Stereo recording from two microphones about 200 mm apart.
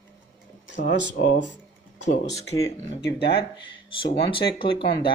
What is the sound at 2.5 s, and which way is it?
Speech, 60° left (ahead or behind).